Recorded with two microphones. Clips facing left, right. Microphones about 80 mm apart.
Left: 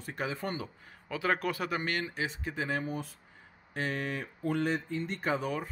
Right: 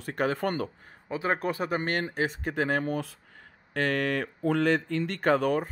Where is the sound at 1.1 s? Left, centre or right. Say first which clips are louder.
Right 2 dB; right.